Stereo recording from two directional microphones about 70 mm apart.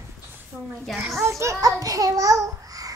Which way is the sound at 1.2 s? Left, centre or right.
Right.